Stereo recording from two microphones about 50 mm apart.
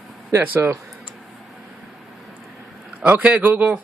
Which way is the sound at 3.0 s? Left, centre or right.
Right.